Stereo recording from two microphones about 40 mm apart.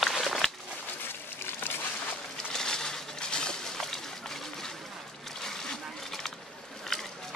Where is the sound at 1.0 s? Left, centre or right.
Left.